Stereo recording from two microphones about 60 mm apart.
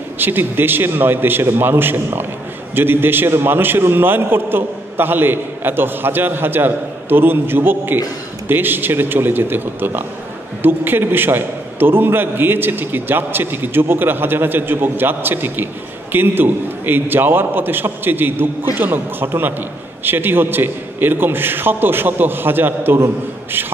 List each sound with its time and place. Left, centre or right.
0.2 s a man's voice: right